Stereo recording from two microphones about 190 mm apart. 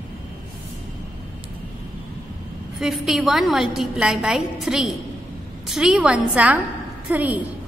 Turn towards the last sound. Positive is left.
turn(degrees=-10)  # may be behind; listen again after turning